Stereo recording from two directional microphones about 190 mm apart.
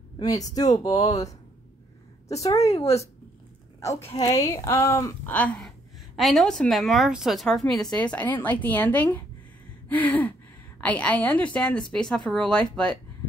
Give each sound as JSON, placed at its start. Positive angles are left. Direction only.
{"t": 0.2, "sound": "a woman's voice", "side_deg": 20}